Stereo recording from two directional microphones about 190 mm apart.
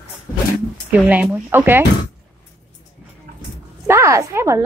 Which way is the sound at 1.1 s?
10° right (ahead or behind).